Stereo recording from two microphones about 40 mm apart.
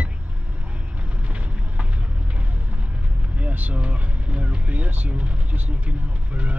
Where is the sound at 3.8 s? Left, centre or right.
Right.